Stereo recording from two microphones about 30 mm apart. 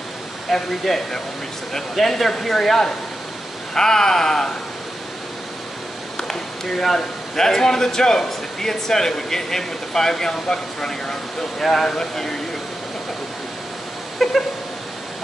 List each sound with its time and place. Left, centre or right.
0.5 s a man's voice: centre
2.0 s a man's voice: centre
6.2 s a man's voice: centre
14.1 s cat: centre